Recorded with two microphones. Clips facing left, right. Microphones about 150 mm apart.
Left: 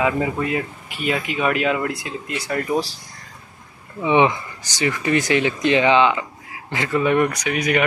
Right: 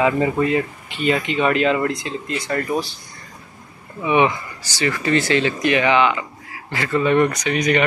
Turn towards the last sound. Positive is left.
turn(degrees=10)  # may be behind; listen again after turning